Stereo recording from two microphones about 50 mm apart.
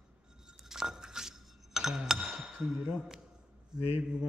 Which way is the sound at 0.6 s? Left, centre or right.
Centre.